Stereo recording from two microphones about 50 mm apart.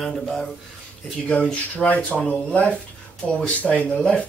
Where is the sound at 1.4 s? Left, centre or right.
Left.